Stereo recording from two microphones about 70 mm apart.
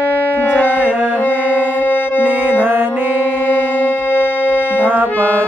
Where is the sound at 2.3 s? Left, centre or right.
Right.